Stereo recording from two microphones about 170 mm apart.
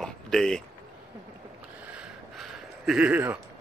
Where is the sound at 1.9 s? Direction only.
5° right (ahead or behind).